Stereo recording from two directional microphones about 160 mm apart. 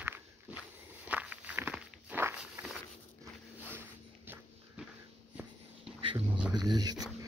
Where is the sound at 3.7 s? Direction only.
15° right (ahead or behind).